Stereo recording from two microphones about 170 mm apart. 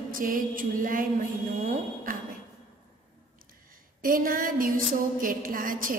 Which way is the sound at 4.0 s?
55° right (ahead or behind).